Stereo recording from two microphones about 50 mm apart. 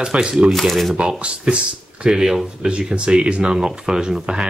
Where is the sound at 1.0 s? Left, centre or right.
Right.